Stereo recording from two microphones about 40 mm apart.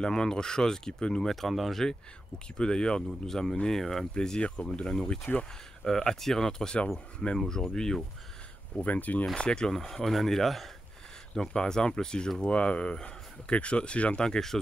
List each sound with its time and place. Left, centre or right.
0.0 s speech: centre
1.3 s speech: centre
1.8 s speech: centre
4.4 s speech: left
5.2 s speech: left
5.9 s speech: centre
8.8 s speech: left
9.4 s speech: left
9.7 s speech: centre
11.3 s speech: centre
14.2 s speech: centre